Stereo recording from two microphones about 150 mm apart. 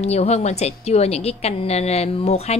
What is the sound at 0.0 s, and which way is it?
A woman's voice, 45° left (ahead or behind).